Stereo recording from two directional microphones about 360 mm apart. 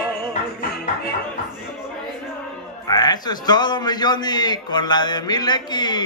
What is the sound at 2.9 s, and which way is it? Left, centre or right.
A man's voice, centre.